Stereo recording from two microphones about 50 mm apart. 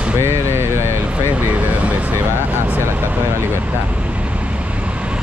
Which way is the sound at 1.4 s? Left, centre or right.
Right.